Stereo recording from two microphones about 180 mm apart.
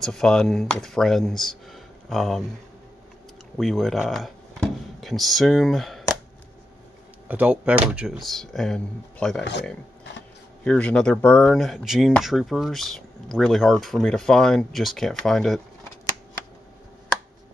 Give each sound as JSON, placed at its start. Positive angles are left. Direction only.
{"t": 0.0, "sound": "speech", "side_deg": 5}
{"t": 3.5, "sound": "speech", "side_deg": 0}
{"t": 7.2, "sound": "speech", "side_deg": -10}
{"t": 9.4, "sound": "speech", "side_deg": 70}
{"t": 10.6, "sound": "speech", "side_deg": 5}